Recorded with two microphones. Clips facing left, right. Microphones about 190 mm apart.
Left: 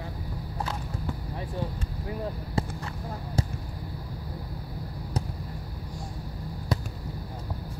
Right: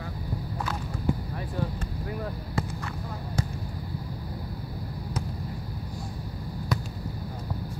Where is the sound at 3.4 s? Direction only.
35° left (ahead or behind).